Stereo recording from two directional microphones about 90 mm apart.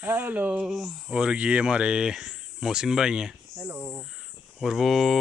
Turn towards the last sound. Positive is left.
turn(degrees=0)  # may be behind; listen again after turning